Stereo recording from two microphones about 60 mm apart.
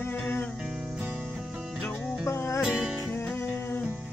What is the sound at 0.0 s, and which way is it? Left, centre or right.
Music, left.